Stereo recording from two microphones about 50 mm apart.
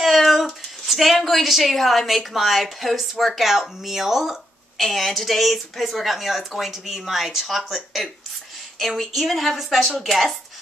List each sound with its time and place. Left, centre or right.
0.0 s a woman's voice: centre